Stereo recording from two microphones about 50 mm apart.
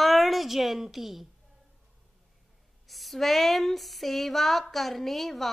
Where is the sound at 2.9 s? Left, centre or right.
Centre.